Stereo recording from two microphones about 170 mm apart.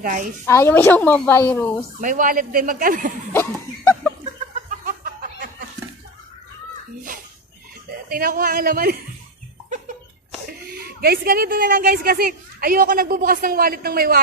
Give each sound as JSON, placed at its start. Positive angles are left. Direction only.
{"t": 0.0, "sound": "a woman's voice", "side_deg": -50}
{"t": 0.5, "sound": "a woman's voice", "side_deg": 15}
{"t": 2.0, "sound": "a woman's voice", "side_deg": -50}
{"t": 3.3, "sound": "cough", "side_deg": 15}
{"t": 4.6, "sound": "a sound", "side_deg": -55}
{"t": 8.1, "sound": "speech", "side_deg": -60}
{"t": 10.7, "sound": "speech", "side_deg": -65}